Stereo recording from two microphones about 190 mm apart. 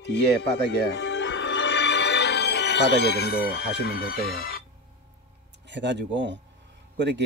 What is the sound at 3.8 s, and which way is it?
Speech, 55° left (ahead or behind).